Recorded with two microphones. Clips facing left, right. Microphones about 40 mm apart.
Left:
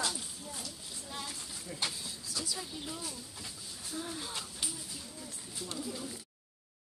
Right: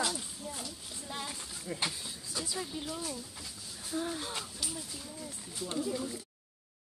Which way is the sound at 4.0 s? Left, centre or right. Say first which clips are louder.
Right 5 dB; right.